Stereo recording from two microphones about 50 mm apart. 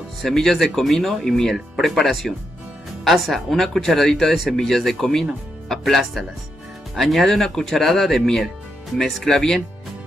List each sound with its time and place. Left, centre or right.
0.2 s speech: centre